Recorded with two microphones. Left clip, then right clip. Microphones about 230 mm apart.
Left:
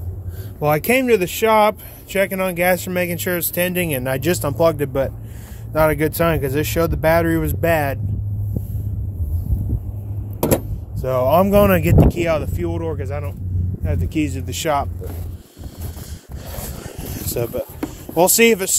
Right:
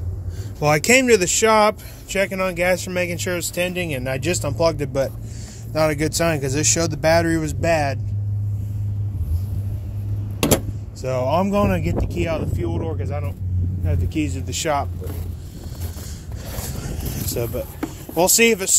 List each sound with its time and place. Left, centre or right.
0.6 s speech: centre
11.0 s speech: centre
16.4 s a sound: centre